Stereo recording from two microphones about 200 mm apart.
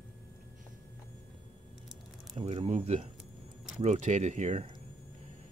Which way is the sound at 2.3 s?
30° right (ahead or behind).